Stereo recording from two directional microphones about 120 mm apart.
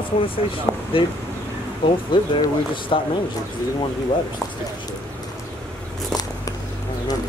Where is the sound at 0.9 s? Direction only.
50° left (ahead or behind).